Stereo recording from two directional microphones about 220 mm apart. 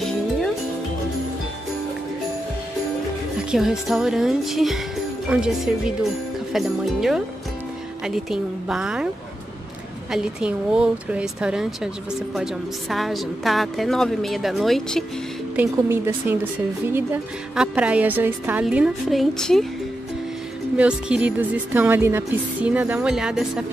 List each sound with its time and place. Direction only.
3.5 s speech: centre (ahead or behind)
10.1 s speech: 5° right (ahead or behind)
12.9 s speech: centre (ahead or behind)
15.5 s speech: 10° right (ahead or behind)
20.7 s speech: 5° right (ahead or behind)